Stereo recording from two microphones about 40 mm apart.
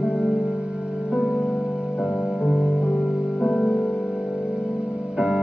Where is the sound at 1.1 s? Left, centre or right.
Right.